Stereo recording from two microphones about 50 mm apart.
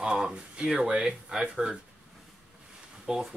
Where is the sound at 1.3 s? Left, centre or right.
Centre.